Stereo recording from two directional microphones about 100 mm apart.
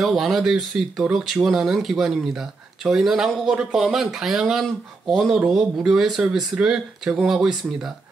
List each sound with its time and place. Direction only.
0.0 s speech: centre (ahead or behind)